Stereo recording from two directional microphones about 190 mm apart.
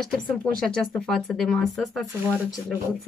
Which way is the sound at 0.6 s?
5° left (ahead or behind).